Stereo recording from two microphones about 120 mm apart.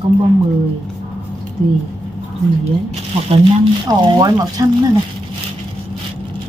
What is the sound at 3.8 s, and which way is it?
Speech, 30° right (ahead or behind).